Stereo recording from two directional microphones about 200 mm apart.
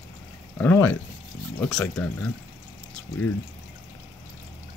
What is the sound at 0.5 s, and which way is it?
Speech, 10° left (ahead or behind).